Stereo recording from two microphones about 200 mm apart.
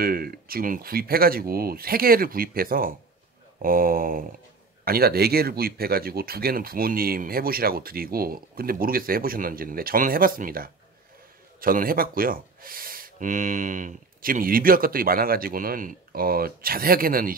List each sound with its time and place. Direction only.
0.0 s speech: 50° right (ahead or behind)